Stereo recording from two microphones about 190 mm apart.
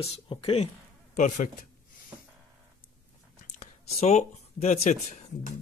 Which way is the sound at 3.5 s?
35° left (ahead or behind).